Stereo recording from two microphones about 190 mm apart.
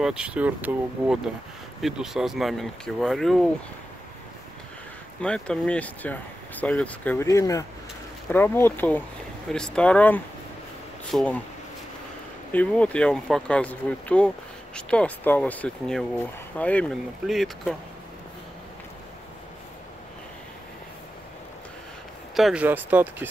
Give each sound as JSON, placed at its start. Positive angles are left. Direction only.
{"t": 0.0, "sound": "speech", "side_deg": -5}
{"t": 5.2, "sound": "speech", "side_deg": 5}
{"t": 12.5, "sound": "speech", "side_deg": 5}
{"t": 22.3, "sound": "speech", "side_deg": -5}